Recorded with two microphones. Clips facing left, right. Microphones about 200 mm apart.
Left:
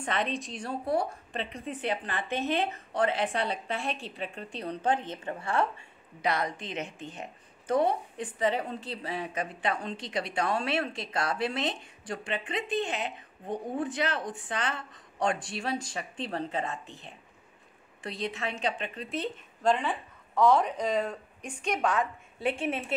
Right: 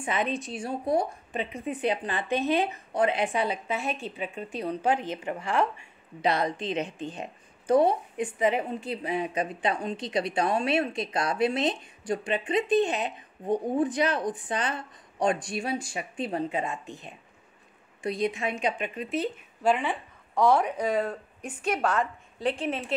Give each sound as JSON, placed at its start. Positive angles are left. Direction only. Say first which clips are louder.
{"t": 0.0, "sound": "a woman's voice", "louder": "right 2 dB", "side_deg": -5}